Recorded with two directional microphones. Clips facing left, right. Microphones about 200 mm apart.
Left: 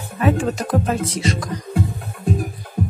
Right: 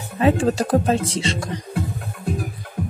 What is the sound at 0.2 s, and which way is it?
Speech, 30° right (ahead or behind).